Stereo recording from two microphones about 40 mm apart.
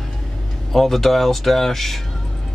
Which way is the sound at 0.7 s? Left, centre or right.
Centre.